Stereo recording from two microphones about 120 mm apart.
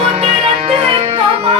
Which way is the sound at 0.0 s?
55° right (ahead or behind).